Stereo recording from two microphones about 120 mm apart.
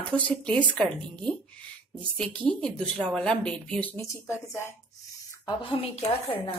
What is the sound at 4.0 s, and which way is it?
Speech, 25° left (ahead or behind).